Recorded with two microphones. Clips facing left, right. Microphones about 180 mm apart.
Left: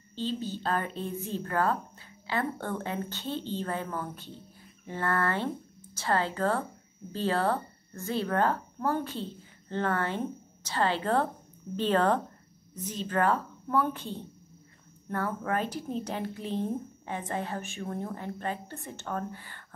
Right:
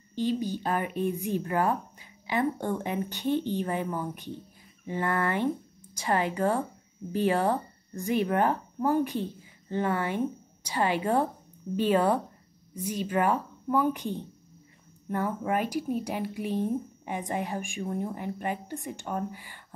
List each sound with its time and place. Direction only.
0.1 s speech: 15° right (ahead or behind)